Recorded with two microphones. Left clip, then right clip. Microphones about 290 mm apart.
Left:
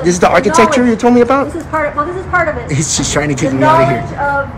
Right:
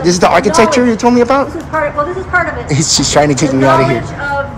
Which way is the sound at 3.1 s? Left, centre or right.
Centre.